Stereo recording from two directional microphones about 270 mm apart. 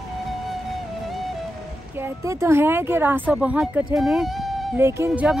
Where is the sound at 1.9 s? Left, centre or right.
Centre.